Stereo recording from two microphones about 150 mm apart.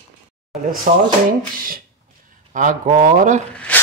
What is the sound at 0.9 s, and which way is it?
Speech, 60° right (ahead or behind).